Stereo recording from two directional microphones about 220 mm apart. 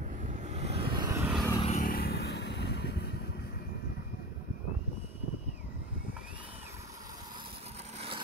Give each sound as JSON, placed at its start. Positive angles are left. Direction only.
{"t": 0.2, "sound": "vehicle", "side_deg": -35}
{"t": 1.6, "sound": "vehicle", "side_deg": 35}